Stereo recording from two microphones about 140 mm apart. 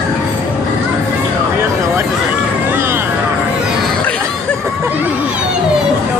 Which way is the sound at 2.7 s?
15° right (ahead or behind).